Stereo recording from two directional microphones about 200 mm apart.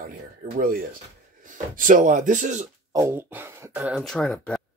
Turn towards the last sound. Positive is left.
turn(degrees=5)  # may be behind; listen again after turning